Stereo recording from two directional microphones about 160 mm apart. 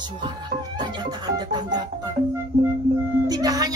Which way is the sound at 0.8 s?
25° right (ahead or behind).